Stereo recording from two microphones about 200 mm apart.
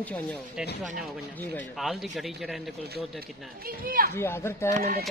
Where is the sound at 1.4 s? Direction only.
5° left (ahead or behind).